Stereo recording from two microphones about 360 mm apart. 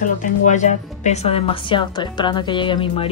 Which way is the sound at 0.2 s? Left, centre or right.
Centre.